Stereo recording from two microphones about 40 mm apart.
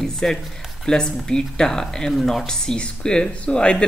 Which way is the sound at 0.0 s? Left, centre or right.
Centre.